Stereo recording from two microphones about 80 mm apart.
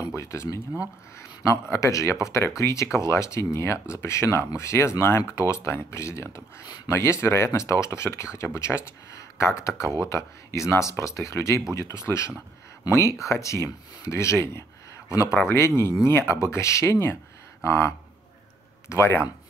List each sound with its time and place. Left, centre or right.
0.0 s speech: left